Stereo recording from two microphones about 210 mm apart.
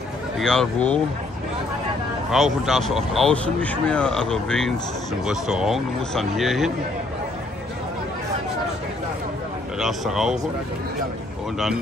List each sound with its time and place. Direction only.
0.4 s speech: 5° left (ahead or behind)
2.3 s speech: centre (ahead or behind)
9.8 s speech: centre (ahead or behind)